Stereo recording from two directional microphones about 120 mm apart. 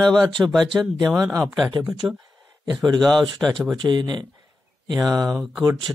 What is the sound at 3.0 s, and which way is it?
Speech, 5° left (ahead or behind).